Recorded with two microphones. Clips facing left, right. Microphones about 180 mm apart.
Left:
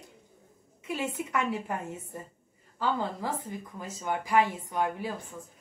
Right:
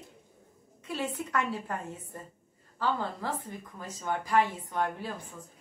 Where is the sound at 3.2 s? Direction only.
10° left (ahead or behind).